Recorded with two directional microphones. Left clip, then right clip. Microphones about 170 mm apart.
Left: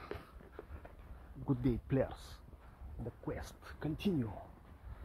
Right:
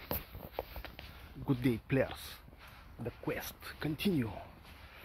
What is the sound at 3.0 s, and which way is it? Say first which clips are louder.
Speech: right 5 dB; 30° right (ahead or behind).